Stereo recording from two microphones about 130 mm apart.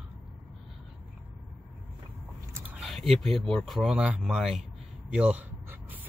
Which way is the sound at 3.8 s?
10° right (ahead or behind).